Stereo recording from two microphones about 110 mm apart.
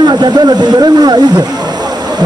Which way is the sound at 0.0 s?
40° right (ahead or behind).